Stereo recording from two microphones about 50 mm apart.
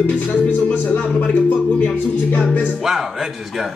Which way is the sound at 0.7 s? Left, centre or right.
Left.